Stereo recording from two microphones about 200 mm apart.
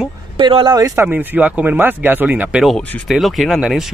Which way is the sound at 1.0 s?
5° right (ahead or behind).